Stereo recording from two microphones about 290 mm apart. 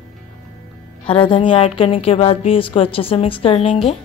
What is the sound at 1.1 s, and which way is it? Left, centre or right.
A woman's voice, centre.